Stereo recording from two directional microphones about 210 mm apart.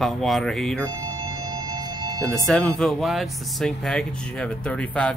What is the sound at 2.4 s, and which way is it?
Speech, centre (ahead or behind).